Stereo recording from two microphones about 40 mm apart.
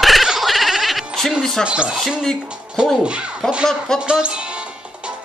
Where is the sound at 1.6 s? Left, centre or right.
Right.